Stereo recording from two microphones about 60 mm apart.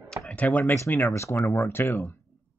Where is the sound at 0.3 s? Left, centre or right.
Left.